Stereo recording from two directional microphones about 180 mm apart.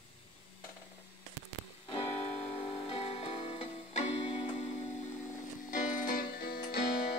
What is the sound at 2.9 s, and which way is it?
Music, 35° left (ahead or behind).